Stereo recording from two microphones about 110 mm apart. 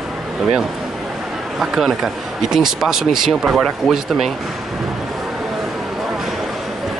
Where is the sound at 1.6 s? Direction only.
5° right (ahead or behind).